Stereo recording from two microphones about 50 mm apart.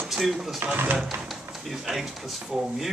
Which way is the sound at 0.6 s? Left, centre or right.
Right.